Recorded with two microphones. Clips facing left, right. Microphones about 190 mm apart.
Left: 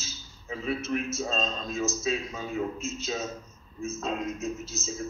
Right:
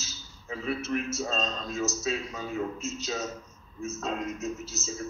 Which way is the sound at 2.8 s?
80° right.